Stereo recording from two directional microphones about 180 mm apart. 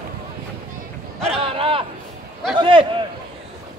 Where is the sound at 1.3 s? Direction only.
30° right (ahead or behind).